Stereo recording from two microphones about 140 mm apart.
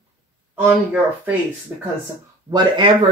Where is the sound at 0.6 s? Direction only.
15° right (ahead or behind).